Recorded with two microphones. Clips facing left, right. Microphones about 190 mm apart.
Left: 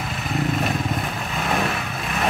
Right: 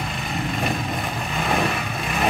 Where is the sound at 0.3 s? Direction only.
Centre (ahead or behind).